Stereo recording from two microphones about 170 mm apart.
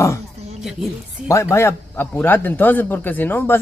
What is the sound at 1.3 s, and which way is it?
A man's voice, 15° left (ahead or behind).